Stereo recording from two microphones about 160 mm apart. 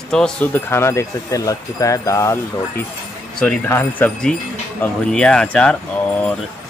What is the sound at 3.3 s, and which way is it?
Speech, 10° left (ahead or behind).